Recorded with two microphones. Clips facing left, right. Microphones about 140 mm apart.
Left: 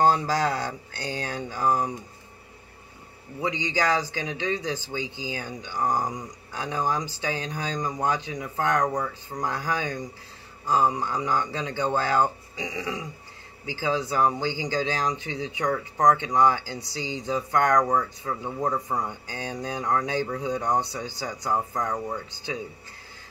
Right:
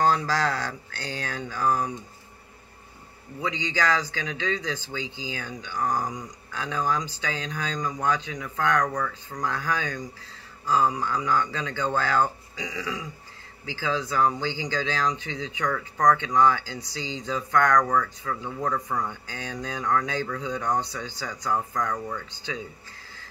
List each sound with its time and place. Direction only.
0.0 s speech: 20° left (ahead or behind)
3.3 s speech: 20° left (ahead or behind)
5.0 s speech: 20° right (ahead or behind)
5.3 s speech: 20° left (ahead or behind)